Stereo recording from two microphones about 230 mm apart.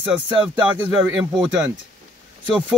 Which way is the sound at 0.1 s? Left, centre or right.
Centre.